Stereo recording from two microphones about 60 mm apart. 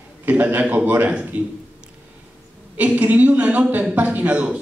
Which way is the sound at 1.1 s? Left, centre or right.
Centre.